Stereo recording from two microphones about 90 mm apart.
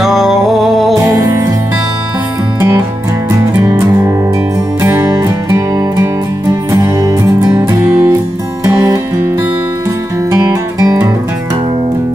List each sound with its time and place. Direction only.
0.0 s music: centre (ahead or behind)
1.0 s music: 30° right (ahead or behind)
3.3 s music: 35° right (ahead or behind)
5.2 s music: 35° right (ahead or behind)
7.5 s music: 30° right (ahead or behind)
10.3 s music: 40° right (ahead or behind)